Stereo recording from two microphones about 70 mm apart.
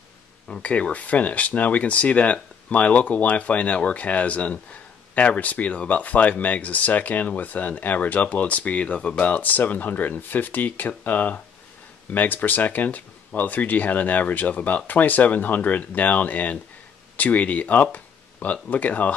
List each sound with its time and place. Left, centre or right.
0.6 s speech: centre